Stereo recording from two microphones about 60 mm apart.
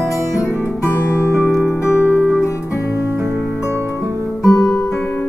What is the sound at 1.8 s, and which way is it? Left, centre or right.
Music, left.